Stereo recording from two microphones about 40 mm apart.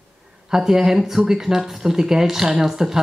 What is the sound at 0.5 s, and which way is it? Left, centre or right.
Speech, centre.